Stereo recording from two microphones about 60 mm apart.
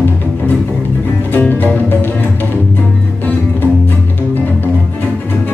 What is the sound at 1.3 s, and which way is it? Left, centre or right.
Music, left.